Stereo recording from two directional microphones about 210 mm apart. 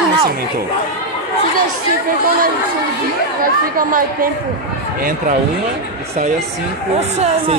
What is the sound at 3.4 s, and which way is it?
Speech, 40° right (ahead or behind).